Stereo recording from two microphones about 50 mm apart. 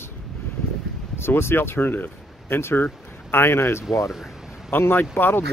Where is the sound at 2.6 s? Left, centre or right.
Left.